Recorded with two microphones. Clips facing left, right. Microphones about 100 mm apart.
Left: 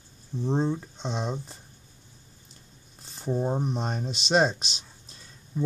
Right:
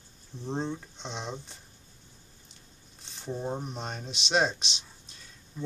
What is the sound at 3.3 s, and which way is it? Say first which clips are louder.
Speech: left 6 dB; 15° left (ahead or behind).